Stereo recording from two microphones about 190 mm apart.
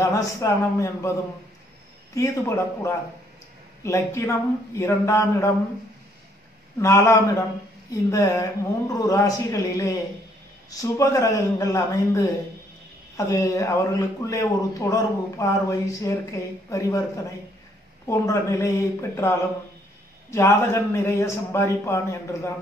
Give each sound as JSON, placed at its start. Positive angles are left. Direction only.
{"t": 0.0, "sound": "speech", "side_deg": 15}
{"t": 2.1, "sound": "speech", "side_deg": 15}
{"t": 6.8, "sound": "speech", "side_deg": 15}